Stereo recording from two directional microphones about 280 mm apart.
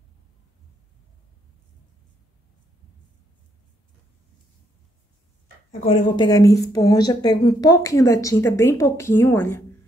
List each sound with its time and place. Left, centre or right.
5.9 s speech: centre